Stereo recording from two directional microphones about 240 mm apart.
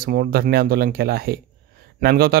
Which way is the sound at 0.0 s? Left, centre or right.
Right.